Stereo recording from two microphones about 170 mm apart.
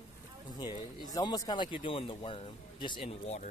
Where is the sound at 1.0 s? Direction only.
25° left (ahead or behind).